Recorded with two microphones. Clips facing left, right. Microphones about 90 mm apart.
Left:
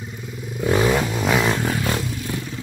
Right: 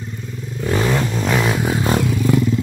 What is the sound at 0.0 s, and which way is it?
Vehicle, 5° left (ahead or behind).